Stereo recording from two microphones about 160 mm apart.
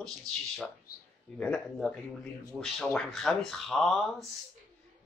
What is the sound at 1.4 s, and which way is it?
Speech, 5° left (ahead or behind).